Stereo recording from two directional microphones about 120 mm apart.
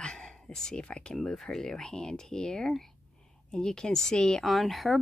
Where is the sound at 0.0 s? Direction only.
5° left (ahead or behind).